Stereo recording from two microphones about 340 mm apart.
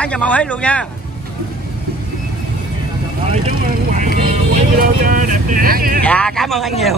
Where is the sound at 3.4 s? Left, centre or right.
Right.